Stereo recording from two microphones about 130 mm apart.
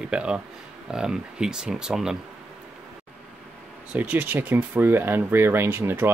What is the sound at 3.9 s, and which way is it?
Speech, 15° right (ahead or behind).